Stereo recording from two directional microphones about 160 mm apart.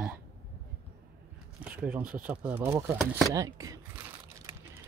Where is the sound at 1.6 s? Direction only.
10° right (ahead or behind).